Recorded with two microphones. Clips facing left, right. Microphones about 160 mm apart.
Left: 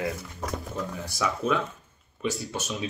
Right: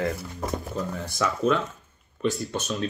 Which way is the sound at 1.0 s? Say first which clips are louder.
Right 4 dB; 10° left (ahead or behind).